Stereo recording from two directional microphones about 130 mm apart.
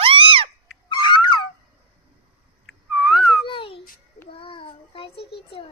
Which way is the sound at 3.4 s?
40° left (ahead or behind).